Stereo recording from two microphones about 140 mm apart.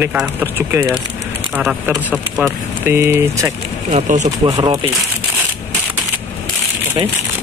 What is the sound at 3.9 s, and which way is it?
Speech, 60° right (ahead or behind).